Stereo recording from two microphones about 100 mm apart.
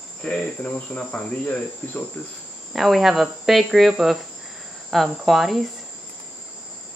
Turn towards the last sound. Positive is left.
turn(degrees=0)  # may be behind; listen again after turning